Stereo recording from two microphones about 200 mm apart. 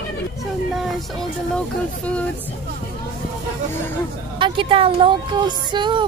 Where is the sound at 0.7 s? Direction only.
Centre (ahead or behind).